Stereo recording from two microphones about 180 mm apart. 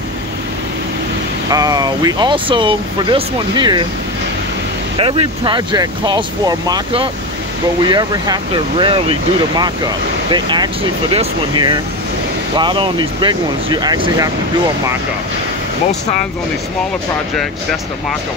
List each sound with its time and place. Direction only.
1.5 s speech: 20° right (ahead or behind)
4.9 s speech: 30° right (ahead or behind)
10.3 s speech: 25° right (ahead or behind)